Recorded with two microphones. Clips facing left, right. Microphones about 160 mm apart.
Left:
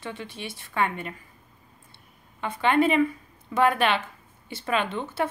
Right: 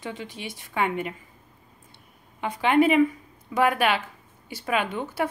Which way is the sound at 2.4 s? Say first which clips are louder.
Right 2 dB; 15° right (ahead or behind).